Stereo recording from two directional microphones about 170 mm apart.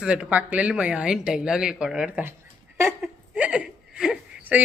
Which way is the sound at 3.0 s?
10° right (ahead or behind).